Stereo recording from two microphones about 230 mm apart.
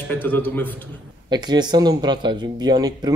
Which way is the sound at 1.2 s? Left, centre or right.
Centre.